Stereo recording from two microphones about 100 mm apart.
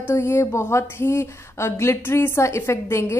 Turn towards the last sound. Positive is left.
turn(degrees=25)  # may be behind; listen again after turning